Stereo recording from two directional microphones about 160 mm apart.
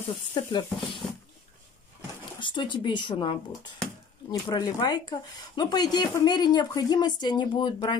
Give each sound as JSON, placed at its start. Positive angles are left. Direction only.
{"t": 0.3, "sound": "speech", "side_deg": 25}
{"t": 1.0, "sound": "a sound", "side_deg": 5}
{"t": 2.4, "sound": "speech", "side_deg": 30}